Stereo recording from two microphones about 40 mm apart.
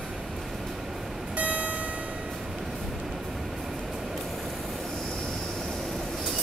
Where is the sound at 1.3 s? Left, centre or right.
Right.